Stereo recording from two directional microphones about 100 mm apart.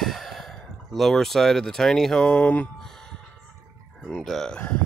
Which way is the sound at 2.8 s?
5° left (ahead or behind).